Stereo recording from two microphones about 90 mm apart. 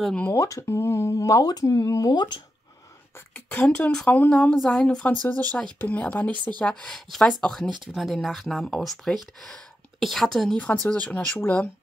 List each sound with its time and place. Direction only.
0.3 s speech: 35° left (ahead or behind); by 2.4 s 55° left (ahead or behind)
3.2 s speech: 25° left (ahead or behind); by 10.6 s 5° left (ahead or behind)
10.6 s speech: 20° left (ahead or behind)